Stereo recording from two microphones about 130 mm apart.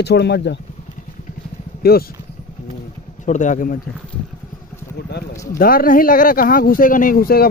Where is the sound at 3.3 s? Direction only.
70° left (ahead or behind); by 3.8 s 90° left.